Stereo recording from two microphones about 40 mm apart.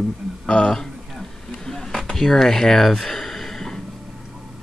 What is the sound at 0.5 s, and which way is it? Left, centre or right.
Speech, centre.